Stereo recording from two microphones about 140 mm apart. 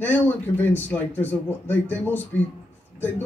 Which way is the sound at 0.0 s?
15° left (ahead or behind).